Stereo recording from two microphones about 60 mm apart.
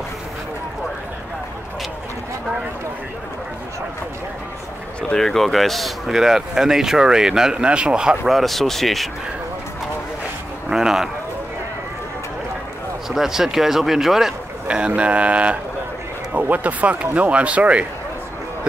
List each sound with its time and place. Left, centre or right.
5.1 s speech: centre
8.3 s speech: centre
10.7 s speech: centre
13.1 s speech: centre
14.7 s speech: centre